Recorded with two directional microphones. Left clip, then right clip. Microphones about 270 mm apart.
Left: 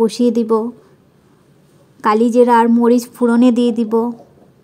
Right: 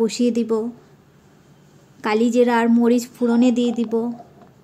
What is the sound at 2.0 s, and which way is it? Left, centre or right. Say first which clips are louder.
A woman's voice: left 6 dB; centre.